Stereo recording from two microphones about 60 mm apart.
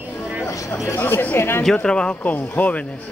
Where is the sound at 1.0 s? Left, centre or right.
Left.